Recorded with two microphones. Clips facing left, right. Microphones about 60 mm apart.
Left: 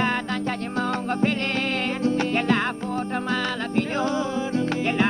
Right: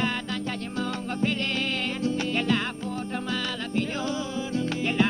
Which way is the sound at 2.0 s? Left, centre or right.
Left.